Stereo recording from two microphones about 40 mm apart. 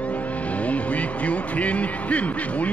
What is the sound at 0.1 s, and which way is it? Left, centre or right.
Speech, left.